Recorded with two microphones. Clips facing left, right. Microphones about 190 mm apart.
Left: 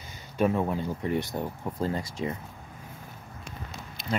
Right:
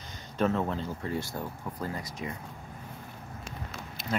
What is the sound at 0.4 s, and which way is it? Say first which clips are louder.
Speech: left 3 dB; 10° left (ahead or behind).